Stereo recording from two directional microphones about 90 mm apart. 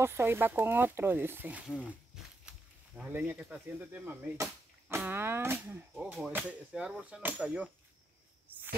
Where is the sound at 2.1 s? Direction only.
10° right (ahead or behind).